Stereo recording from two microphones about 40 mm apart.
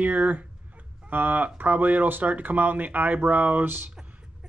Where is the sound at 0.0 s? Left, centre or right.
Right.